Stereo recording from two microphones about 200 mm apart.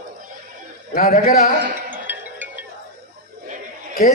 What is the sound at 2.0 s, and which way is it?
Music, 10° right (ahead or behind).